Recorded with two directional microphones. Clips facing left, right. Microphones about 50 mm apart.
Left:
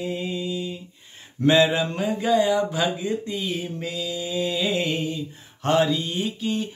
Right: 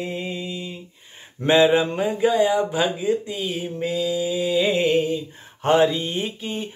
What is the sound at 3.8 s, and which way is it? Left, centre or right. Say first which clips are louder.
Speech: right 6 dB; right.